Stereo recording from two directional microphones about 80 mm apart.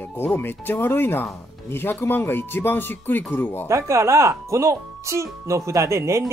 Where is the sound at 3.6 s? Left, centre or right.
Right.